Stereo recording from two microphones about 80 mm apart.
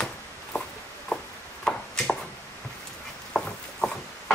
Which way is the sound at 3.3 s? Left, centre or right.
Centre.